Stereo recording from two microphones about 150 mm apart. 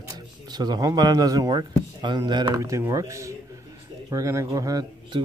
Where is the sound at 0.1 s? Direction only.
25° right (ahead or behind).